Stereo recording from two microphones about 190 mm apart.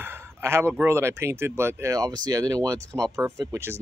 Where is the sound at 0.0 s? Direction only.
10° right (ahead or behind).